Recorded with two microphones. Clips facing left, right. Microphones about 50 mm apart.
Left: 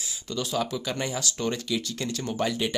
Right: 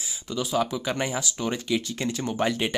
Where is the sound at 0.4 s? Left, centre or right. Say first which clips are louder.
Right 3 dB; centre.